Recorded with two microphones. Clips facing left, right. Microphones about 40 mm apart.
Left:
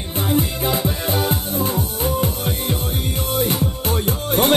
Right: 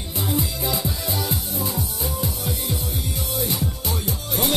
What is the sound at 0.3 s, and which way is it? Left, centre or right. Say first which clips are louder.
Music: left 6 dB; left.